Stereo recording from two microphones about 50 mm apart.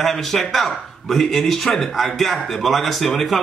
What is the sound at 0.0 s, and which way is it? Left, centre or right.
A man's voice, centre.